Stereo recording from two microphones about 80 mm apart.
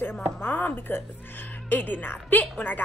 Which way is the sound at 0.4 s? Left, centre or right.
Left.